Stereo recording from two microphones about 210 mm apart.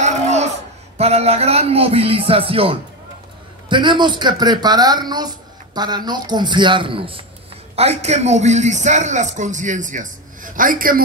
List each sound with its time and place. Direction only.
0.0 s laughter: 35° right (ahead or behind)
0.9 s a man's voice: 30° right (ahead or behind)